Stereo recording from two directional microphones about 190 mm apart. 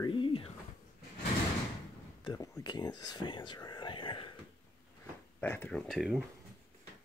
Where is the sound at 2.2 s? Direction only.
20° left (ahead or behind).